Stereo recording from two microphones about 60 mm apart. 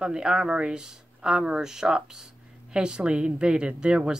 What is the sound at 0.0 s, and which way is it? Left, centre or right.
Speech, centre.